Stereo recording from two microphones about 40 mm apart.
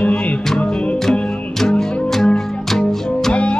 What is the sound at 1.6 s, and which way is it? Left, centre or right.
Music, centre.